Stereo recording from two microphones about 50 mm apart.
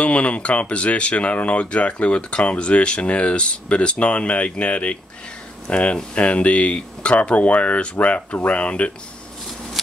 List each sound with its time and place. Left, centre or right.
0.0 s speech: left